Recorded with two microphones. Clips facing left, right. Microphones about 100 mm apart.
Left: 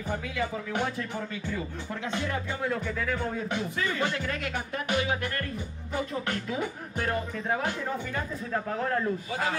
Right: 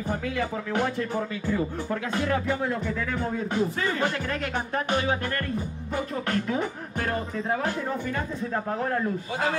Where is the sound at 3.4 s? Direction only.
35° right (ahead or behind).